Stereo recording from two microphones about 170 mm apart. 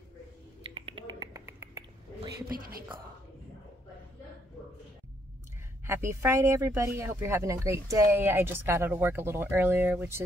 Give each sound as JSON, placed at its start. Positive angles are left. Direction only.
{"t": 0.7, "sound": "finger snapping", "side_deg": -35}
{"t": 2.3, "sound": "speech", "side_deg": -60}
{"t": 5.9, "sound": "speech", "side_deg": -15}